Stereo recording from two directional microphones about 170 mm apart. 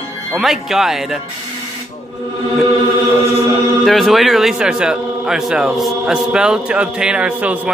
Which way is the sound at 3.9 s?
Centre (ahead or behind).